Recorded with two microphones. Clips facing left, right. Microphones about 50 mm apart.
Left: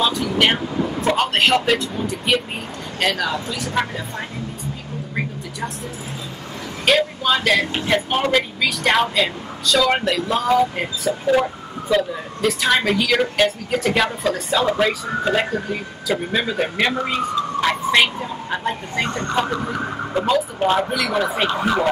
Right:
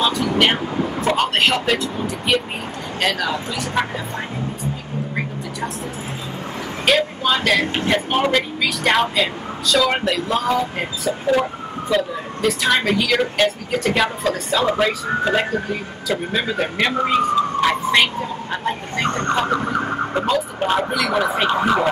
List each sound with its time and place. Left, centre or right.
0.0 s speech: centre
6.9 s speech: centre
19.0 s speech: right
20.2 s speech: centre